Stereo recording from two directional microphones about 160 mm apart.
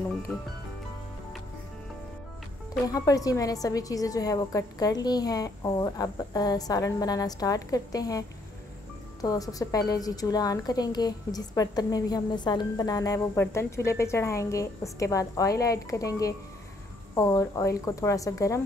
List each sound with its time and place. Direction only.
2.9 s a woman's voice: 20° left (ahead or behind)